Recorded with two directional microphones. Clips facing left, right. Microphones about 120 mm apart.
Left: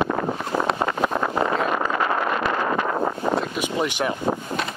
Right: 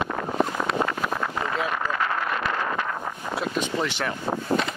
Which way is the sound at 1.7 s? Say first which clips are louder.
Left 4 dB; 25° left (ahead or behind).